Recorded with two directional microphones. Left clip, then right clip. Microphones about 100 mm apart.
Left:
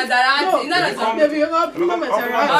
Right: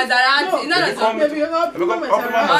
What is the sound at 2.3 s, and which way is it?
Speech, 20° right (ahead or behind).